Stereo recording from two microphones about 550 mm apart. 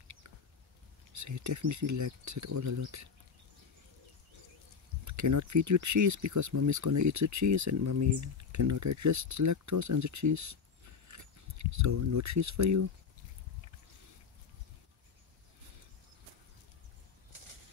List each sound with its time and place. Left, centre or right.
1.1 s speech: right
5.0 s speech: right